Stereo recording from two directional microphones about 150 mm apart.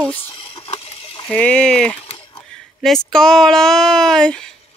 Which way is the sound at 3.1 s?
5° left (ahead or behind).